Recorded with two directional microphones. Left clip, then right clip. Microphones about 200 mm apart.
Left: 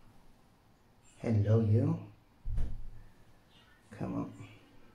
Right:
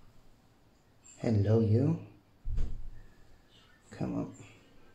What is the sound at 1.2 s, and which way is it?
Speech, 15° right (ahead or behind).